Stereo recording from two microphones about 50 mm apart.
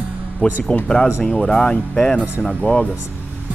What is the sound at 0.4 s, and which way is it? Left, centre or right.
Speech, left.